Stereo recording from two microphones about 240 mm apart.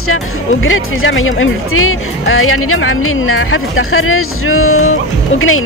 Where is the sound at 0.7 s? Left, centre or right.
Left.